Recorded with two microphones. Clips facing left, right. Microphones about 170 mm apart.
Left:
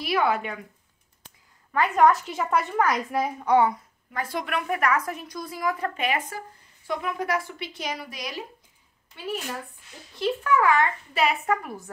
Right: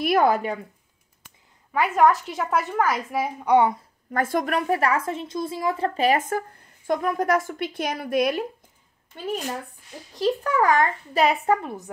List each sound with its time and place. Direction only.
0.0 s a woman's voice: 45° right (ahead or behind)
1.7 s a woman's voice: 5° right (ahead or behind)
3.4 s speech: 20° right (ahead or behind)
4.1 s a woman's voice: 50° right (ahead or behind)
9.1 s a woman's voice: 40° right (ahead or behind); by 11.9 s 20° right (ahead or behind)